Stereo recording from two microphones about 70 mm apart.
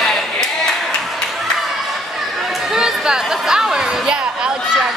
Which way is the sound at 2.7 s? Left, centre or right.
Centre.